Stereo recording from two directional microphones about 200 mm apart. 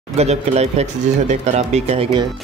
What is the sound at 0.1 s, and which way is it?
Speech, 30° right (ahead or behind).